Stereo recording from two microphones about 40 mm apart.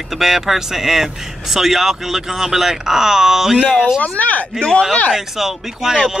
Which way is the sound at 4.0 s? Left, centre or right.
Left.